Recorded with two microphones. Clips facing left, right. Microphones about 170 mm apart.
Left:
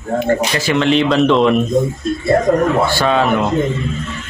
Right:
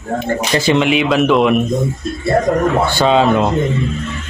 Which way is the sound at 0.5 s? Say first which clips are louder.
Right 3 dB; 25° right (ahead or behind).